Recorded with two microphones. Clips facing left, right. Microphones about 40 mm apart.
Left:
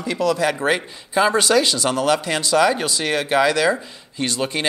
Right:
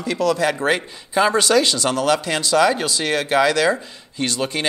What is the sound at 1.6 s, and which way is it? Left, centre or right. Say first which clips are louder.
Speech: even; centre.